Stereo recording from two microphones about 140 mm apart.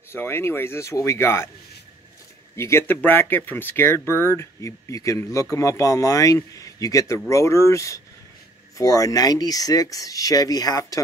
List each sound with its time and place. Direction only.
0.1 s speech: 15° left (ahead or behind)
2.5 s speech: 20° left (ahead or behind)